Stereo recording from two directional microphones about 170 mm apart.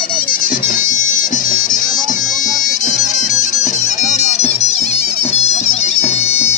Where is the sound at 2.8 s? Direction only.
45° left (ahead or behind).